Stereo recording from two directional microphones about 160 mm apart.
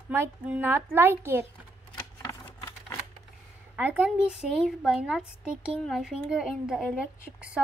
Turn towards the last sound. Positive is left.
turn(degrees=-5)  # may be behind; listen again after turning